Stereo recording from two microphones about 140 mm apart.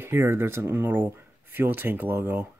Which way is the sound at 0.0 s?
15° right (ahead or behind).